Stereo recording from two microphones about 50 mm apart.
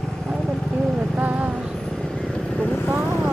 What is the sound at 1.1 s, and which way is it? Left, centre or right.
Vehicle, right.